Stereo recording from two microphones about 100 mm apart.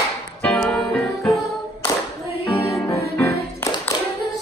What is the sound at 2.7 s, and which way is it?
Music, 30° left (ahead or behind).